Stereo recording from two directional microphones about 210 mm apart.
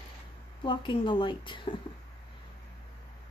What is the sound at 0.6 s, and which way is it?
A woman's voice, 20° left (ahead or behind).